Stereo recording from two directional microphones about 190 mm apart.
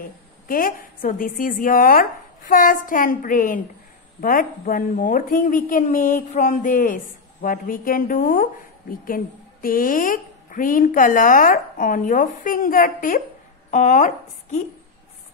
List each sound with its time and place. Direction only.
0.0 s a woman's voice: 45° left (ahead or behind)